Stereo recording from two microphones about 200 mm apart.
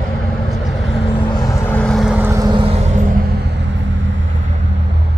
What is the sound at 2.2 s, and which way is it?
Vehicle, 15° right (ahead or behind).